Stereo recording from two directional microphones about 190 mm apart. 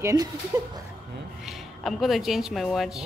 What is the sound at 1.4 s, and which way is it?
Speech, centre (ahead or behind).